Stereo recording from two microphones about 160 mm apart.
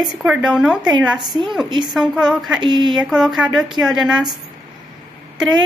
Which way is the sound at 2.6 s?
25° right (ahead or behind).